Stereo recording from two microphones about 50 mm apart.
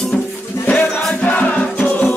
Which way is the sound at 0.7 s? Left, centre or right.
Left.